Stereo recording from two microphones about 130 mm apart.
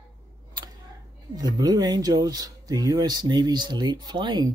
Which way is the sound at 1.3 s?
30° right (ahead or behind).